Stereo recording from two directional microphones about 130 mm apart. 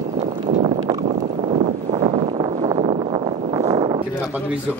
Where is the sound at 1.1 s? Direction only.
65° right (ahead or behind); by 4.0 s 40° right (ahead or behind).